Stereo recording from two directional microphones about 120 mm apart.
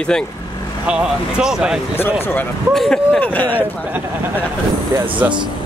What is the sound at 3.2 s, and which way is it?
Speech, 15° left (ahead or behind).